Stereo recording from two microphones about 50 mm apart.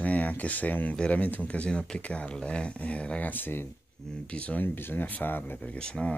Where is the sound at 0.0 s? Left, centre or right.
Left.